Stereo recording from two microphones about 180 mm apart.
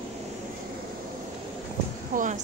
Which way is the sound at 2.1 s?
45° right (ahead or behind).